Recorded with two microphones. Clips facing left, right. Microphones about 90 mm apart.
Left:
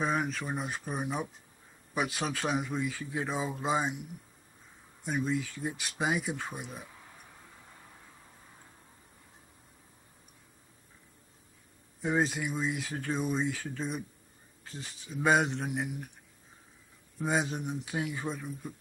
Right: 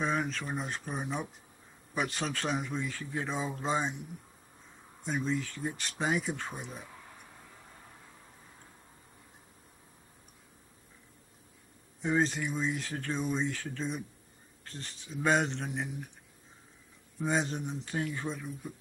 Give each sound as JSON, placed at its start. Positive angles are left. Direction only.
{"t": 0.0, "sound": "speech", "side_deg": 5}
{"t": 5.0, "sound": "speech", "side_deg": 10}
{"t": 12.0, "sound": "speech", "side_deg": 10}
{"t": 17.2, "sound": "speech", "side_deg": 10}